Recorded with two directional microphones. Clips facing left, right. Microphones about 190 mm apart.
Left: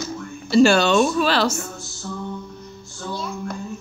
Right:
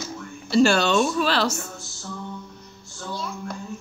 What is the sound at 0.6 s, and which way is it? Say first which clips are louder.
Speech: left 3 dB; 80° left.